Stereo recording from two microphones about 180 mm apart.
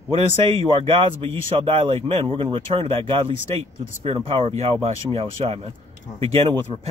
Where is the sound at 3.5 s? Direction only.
15° left (ahead or behind).